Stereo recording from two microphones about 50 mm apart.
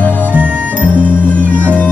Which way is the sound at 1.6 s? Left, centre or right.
Left.